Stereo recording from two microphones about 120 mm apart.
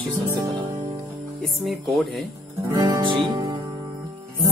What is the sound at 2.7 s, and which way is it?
Music, 35° right (ahead or behind).